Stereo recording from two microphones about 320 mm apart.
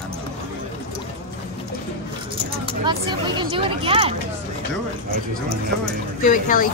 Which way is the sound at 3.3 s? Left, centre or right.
Centre.